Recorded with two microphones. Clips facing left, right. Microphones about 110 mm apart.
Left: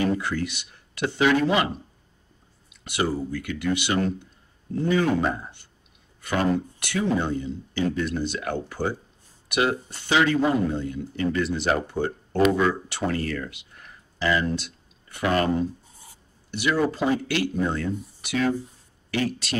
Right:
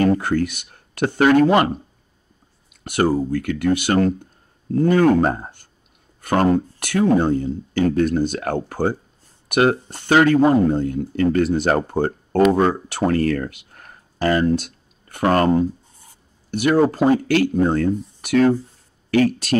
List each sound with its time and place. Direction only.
0.0 s speech: 50° right (ahead or behind)
2.7 s speech: 50° right (ahead or behind)